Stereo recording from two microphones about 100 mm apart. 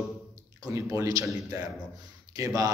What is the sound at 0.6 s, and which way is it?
A man's voice, 35° right (ahead or behind).